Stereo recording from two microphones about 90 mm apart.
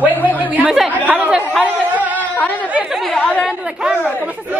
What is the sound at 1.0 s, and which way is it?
Chatter, 10° right (ahead or behind).